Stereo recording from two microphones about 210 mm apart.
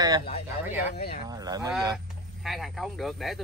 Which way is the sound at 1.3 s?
20° right (ahead or behind).